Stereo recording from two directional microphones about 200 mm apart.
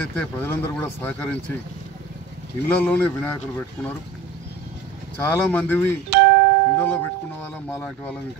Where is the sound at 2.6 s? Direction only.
10° left (ahead or behind).